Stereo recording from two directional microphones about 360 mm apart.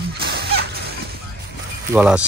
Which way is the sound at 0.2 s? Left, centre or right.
Right.